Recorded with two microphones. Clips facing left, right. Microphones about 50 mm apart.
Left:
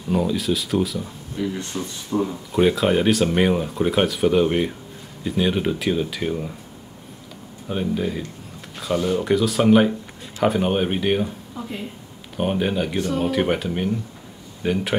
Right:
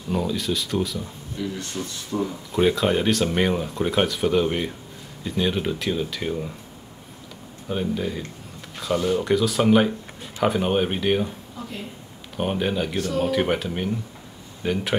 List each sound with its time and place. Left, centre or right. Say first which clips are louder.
0.1 s speech: left 3 dB; centre
1.3 s speech: left 3 dB; centre
7.6 s speech: left 2 dB; centre
12.4 s speech: left 2 dB; centre